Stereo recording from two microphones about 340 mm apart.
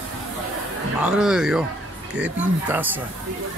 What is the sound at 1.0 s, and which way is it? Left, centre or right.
Speech, centre.